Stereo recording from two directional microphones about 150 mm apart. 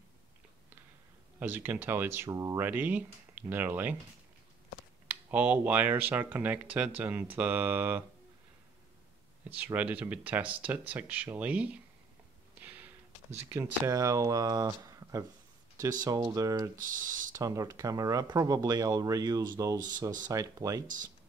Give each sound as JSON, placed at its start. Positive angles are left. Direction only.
{"t": 1.4, "sound": "speech", "side_deg": -15}
{"t": 5.0, "sound": "speech", "side_deg": -10}
{"t": 9.7, "sound": "speech", "side_deg": -10}
{"t": 12.5, "sound": "a sound", "side_deg": -10}
{"t": 13.5, "sound": "speech", "side_deg": -20}
{"t": 16.7, "sound": "speech", "side_deg": -65}
{"t": 17.3, "sound": "speech", "side_deg": -20}